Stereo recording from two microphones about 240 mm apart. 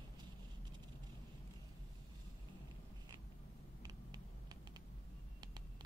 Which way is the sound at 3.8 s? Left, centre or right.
Centre.